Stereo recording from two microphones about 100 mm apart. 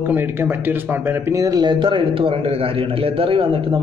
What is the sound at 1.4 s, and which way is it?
A man's voice, 40° right (ahead or behind).